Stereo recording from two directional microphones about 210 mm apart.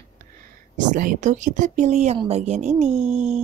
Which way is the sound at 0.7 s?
40° right (ahead or behind).